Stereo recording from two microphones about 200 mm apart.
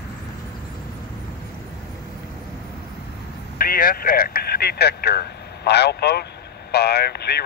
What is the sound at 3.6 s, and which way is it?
Speech, 45° left (ahead or behind).